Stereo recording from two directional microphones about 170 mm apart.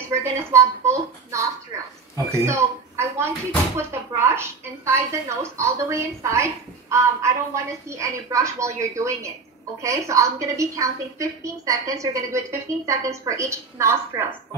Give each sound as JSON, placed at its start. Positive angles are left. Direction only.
{"t": 0.1, "sound": "a woman's voice", "side_deg": -15}